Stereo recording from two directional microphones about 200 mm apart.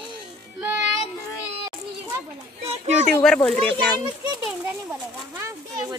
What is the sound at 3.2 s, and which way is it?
Speech, 5° left (ahead or behind).